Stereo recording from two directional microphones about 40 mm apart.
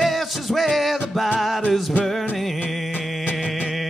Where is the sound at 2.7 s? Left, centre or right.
Centre.